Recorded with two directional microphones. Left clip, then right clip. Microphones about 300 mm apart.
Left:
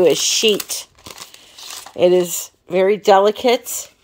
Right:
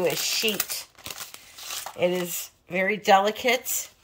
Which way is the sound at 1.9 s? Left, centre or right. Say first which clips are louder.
Left 12 dB; left.